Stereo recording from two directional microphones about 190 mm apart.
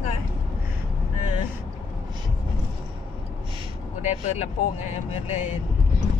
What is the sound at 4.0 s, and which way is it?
Speech, 35° left (ahead or behind).